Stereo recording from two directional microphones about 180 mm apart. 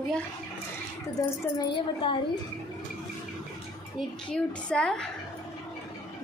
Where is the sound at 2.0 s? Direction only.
25° left (ahead or behind).